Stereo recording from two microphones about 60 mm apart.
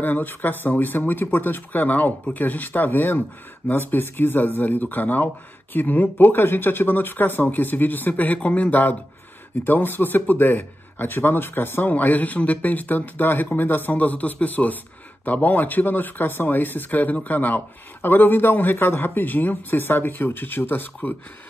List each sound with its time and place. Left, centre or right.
0.0 s speech: left